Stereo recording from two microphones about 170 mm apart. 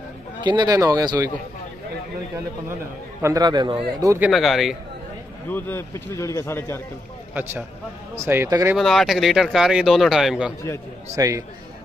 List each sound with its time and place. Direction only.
0.4 s a man's voice: 25° right (ahead or behind)
3.2 s a man's voice: 20° right (ahead or behind)
4.2 s speech: centre (ahead or behind)
5.5 s speech: 15° left (ahead or behind)
8.2 s speech: 15° right (ahead or behind)
8.7 s speech: centre (ahead or behind)
11.1 s a man's voice: 20° right (ahead or behind)